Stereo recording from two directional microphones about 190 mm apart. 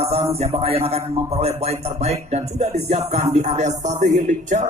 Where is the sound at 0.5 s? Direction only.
30° right (ahead or behind).